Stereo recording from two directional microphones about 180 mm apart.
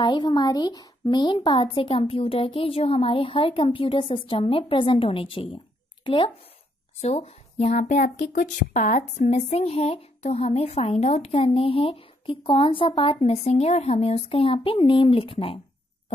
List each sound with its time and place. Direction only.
0.0 s speech: 25° left (ahead or behind)